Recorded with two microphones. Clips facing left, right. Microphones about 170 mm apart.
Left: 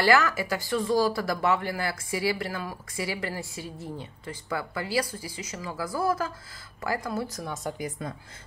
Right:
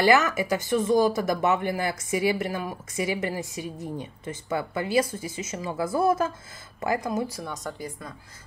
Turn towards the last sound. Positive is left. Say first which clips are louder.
# left 1 dB
turn(degrees=10)  # may be behind; listen again after turning